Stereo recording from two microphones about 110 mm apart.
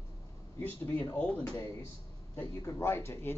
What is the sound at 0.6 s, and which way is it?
Speech, 15° left (ahead or behind).